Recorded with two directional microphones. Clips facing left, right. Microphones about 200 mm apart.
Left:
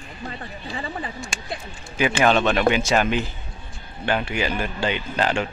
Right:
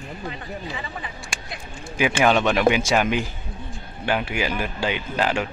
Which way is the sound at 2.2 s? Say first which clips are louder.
Right 1 dB; 10° right (ahead or behind).